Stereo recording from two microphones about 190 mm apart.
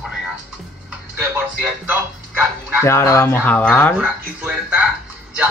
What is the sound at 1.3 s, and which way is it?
Music, 10° right (ahead or behind).